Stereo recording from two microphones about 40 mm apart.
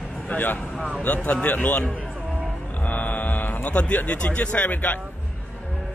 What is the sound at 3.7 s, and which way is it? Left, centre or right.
Speech, left.